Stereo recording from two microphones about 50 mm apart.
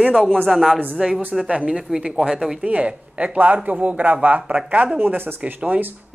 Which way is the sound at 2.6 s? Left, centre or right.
Right.